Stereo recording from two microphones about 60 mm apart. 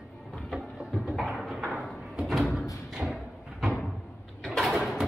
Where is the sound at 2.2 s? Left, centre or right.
Centre.